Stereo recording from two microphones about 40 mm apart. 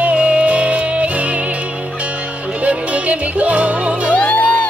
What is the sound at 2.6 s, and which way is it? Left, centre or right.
Music, right.